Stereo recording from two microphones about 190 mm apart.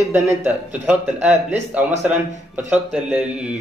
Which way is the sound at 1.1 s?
35° right (ahead or behind).